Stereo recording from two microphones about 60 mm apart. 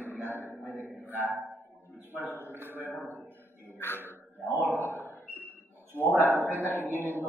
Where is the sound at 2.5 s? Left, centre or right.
Right.